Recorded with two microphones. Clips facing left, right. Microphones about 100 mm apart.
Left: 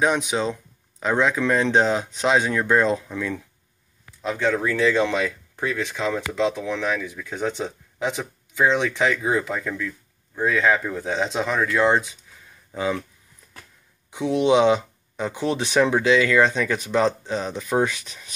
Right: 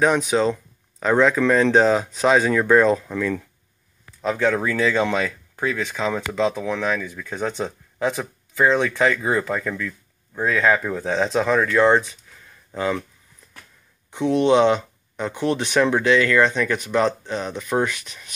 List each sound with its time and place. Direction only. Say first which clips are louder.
0.0 s speech: right 3 dB; centre (ahead or behind)
7.0 s speech: right 1 dB; 10° left (ahead or behind)
14.1 s speech: right 2 dB; 15° left (ahead or behind)